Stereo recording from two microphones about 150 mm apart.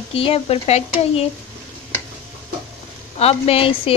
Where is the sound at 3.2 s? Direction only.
40° left (ahead or behind).